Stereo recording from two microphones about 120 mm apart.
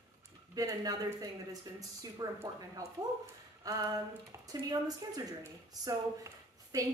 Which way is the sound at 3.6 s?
30° right (ahead or behind).